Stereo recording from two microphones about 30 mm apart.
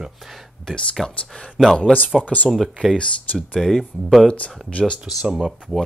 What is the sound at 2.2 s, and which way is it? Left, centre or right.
Speech, left.